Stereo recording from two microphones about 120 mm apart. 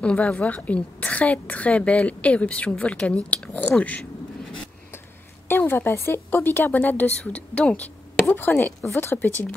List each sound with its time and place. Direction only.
0.0 s a woman's voice: 10° left (ahead or behind)
5.5 s a woman's voice: 15° left (ahead or behind)